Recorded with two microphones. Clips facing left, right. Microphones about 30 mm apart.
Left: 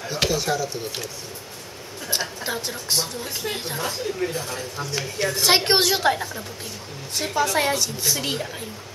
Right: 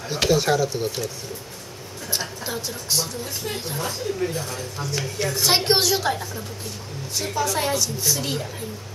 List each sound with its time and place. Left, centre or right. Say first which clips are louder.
0.3 s speech: right 9 dB; centre
2.0 s a woman's voice: left 2 dB; centre